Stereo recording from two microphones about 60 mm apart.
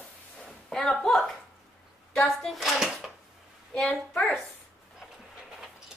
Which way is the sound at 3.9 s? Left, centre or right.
Left.